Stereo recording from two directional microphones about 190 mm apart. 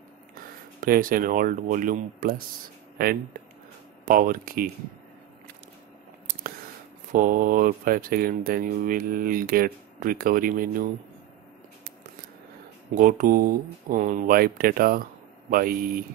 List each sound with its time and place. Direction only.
0.3 s speech: 50° right (ahead or behind)
4.1 s speech: 45° right (ahead or behind)
7.1 s speech: 45° right (ahead or behind)
12.9 s speech: 45° right (ahead or behind)